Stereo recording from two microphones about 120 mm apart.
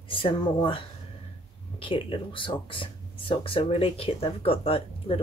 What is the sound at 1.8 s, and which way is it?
Speech, 45° left (ahead or behind).